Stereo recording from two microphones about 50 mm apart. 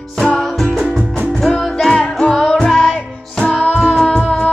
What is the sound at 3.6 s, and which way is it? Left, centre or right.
Music, left.